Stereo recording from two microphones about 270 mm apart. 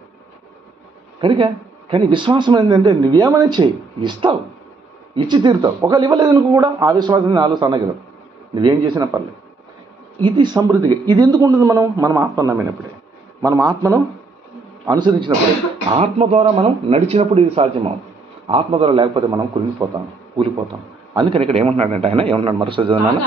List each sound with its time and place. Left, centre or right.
1.2 s a man's voice: centre
10.2 s a man's voice: centre
21.1 s speech: centre